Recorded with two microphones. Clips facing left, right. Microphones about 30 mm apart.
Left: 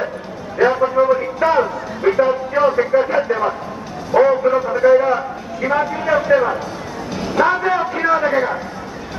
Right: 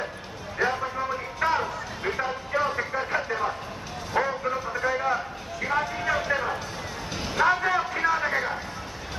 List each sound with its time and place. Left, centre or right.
0.6 s a sound: left
2.1 s a man's voice: left
7.2 s a man's voice: centre